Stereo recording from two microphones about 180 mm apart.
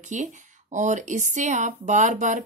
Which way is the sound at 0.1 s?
40° right (ahead or behind).